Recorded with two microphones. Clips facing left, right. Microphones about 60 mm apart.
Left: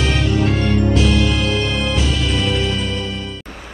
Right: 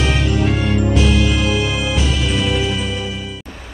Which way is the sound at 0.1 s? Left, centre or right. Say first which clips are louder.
Even; centre.